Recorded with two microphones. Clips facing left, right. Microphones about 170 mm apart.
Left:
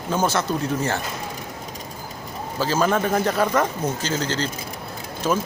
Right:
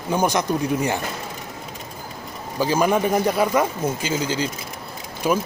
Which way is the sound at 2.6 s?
15° right (ahead or behind).